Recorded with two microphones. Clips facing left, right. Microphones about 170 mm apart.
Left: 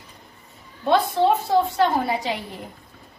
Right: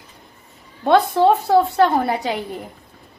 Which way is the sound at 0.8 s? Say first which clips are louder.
Right 4 dB; 60° right (ahead or behind).